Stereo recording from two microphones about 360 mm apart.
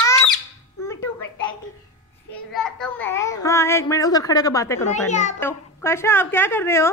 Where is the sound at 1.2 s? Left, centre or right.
Left.